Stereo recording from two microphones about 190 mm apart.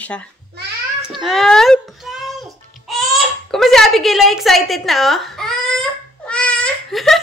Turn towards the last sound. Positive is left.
turn(degrees=0)  # may be behind; listen again after turning